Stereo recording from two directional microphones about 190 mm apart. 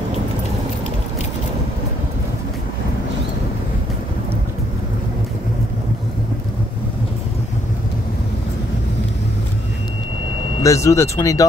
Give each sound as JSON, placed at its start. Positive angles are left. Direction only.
{"t": 10.6, "sound": "speech", "side_deg": 15}